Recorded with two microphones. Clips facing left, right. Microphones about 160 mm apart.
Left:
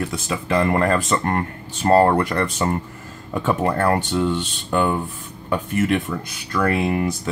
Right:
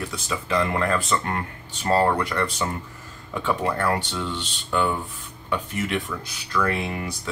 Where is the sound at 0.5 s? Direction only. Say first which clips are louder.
Left 5 dB; 50° left (ahead or behind).